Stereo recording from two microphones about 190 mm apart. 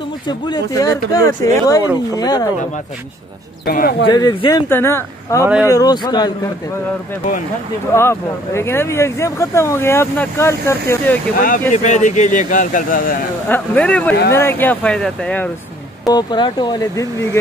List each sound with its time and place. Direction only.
0.3 s speech: 20° left (ahead or behind)
3.6 s speech: 55° left (ahead or behind)
4.1 s speech: 20° left (ahead or behind)
5.4 s speech: 10° right (ahead or behind)
5.7 s speech: 20° left (ahead or behind)
7.9 s speech: 15° left (ahead or behind)
11.3 s speech: 45° left (ahead or behind)
13.5 s speech: 5° left (ahead or behind)
16.1 s speech: 20° left (ahead or behind)